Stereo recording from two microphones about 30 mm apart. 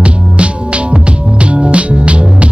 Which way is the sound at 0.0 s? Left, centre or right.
Right.